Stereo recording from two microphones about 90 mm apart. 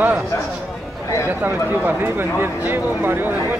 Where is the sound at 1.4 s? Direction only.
20° right (ahead or behind).